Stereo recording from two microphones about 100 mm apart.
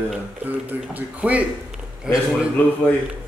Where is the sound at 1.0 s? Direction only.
15° right (ahead or behind).